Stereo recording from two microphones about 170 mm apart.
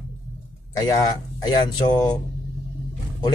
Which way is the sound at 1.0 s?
25° left (ahead or behind).